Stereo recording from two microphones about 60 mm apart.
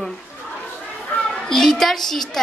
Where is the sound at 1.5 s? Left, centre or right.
Centre.